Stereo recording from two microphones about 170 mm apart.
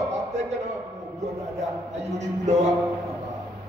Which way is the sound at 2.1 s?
45° right (ahead or behind).